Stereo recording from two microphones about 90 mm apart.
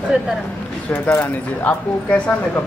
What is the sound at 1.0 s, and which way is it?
Speech, 20° left (ahead or behind).